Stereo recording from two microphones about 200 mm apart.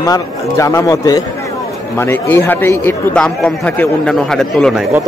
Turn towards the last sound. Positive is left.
turn(degrees=0)  # may be behind; listen again after turning